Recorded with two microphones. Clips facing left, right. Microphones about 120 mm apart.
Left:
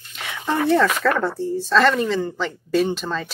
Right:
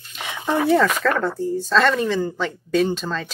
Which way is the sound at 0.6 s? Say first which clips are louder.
Even; centre (ahead or behind).